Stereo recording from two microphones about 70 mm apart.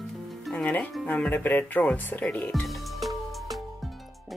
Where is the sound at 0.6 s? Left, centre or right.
Left.